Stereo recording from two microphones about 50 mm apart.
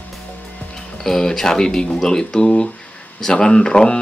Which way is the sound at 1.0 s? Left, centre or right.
Centre.